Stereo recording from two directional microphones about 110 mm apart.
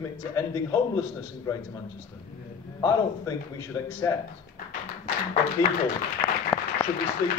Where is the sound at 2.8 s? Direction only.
30° left (ahead or behind).